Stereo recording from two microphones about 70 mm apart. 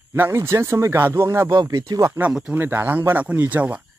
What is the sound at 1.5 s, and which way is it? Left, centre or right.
Speech, right.